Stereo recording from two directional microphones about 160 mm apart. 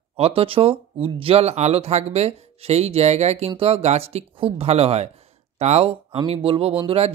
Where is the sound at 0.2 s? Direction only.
35° right (ahead or behind).